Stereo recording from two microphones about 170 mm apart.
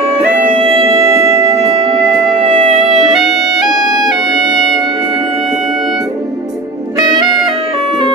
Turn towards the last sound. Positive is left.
turn(degrees=-25)  # may be behind; listen again after turning